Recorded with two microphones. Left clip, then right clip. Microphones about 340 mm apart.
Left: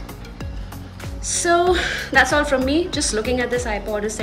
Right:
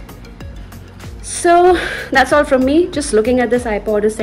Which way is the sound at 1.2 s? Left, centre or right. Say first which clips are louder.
Right 7 dB; centre.